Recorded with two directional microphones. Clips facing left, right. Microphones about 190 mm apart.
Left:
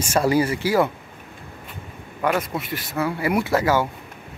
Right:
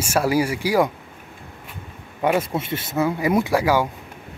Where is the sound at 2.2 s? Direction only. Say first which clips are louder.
Right 2 dB; 25° right (ahead or behind).